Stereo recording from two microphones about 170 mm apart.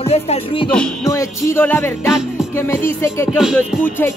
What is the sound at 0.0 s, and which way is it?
Music, 35° left (ahead or behind).